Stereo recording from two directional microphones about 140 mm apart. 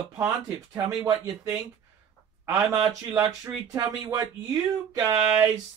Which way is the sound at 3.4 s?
25° right (ahead or behind).